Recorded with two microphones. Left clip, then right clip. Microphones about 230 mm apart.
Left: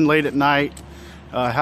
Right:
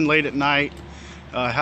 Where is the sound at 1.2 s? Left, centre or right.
Left.